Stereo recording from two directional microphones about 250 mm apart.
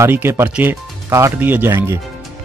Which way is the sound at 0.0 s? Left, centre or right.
Centre.